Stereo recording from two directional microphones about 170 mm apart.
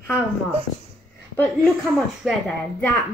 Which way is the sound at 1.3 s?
10° left (ahead or behind).